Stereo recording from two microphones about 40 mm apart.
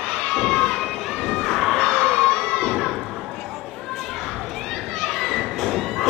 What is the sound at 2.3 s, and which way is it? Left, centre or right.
Children shouting, left.